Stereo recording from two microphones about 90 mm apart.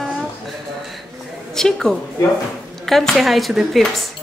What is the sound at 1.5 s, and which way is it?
A woman's voice, 5° left (ahead or behind).